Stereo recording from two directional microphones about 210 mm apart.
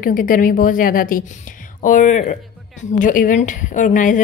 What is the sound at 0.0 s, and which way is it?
A woman's voice, 40° left (ahead or behind).